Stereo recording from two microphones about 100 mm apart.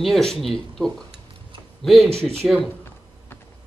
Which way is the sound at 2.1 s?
90° right.